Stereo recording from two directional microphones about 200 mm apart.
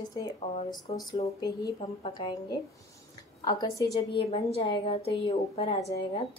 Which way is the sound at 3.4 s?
20° left (ahead or behind).